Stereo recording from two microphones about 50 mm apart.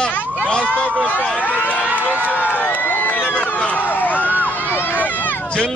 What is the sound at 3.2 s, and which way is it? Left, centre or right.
Run, left.